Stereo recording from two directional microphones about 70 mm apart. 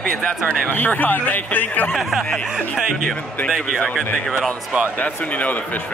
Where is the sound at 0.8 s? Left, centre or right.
Left.